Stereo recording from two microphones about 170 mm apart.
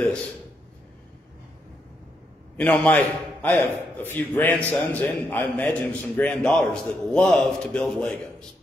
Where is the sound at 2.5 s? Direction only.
10° left (ahead or behind).